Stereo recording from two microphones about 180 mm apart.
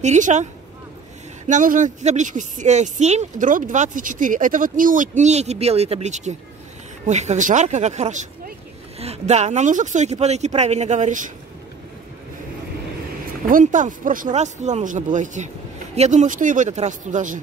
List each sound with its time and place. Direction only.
0.0 s speech: 40° right (ahead or behind)
1.5 s speech: 45° right (ahead or behind)
13.5 s speech: 45° right (ahead or behind)